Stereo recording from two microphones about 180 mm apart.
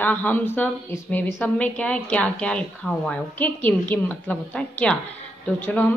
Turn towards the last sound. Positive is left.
turn(degrees=10)  # may be behind; listen again after turning